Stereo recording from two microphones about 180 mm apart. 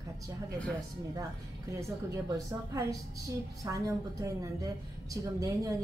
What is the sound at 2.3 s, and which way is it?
A woman's voice, 20° right (ahead or behind).